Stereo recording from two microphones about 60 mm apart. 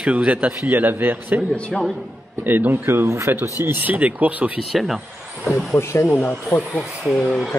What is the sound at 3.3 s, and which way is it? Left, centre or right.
Speech, right.